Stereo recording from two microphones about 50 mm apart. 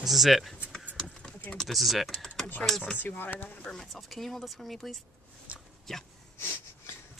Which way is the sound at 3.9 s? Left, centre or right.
Centre.